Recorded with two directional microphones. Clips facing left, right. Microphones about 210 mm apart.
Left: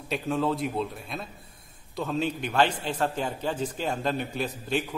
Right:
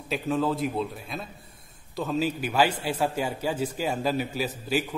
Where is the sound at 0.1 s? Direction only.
Centre (ahead or behind).